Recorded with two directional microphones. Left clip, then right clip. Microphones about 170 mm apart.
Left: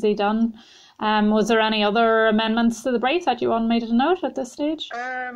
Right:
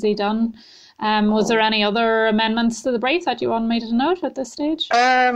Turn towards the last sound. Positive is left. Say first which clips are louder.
# right 13 dB
turn(degrees=-50)  # may be behind; listen again after turning